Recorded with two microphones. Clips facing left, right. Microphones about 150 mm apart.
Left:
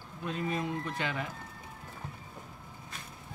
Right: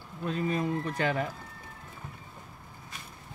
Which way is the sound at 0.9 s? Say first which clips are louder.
Right 6 dB; 45° right (ahead or behind).